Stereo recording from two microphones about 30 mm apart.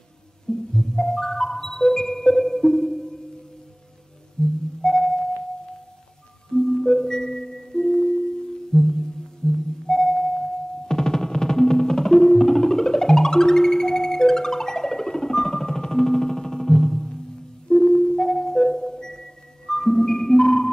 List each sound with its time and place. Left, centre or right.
0.5 s music: centre
4.4 s music: left
6.5 s music: centre
9.4 s sonar: left
9.8 s music: centre
19.9 s marimba: centre